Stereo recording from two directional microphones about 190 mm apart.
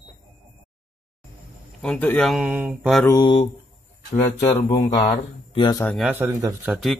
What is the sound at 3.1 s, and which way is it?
Mantra, 25° left (ahead or behind).